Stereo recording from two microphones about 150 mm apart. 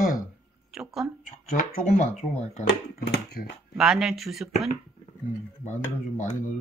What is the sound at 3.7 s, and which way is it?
Speech, 5° right (ahead or behind).